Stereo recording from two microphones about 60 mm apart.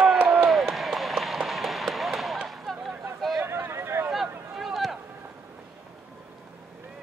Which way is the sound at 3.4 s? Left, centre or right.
Right.